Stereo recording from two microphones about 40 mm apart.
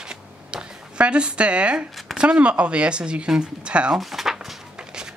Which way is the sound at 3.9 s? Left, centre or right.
Centre.